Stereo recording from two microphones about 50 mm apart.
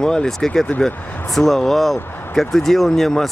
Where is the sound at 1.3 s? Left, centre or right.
Centre.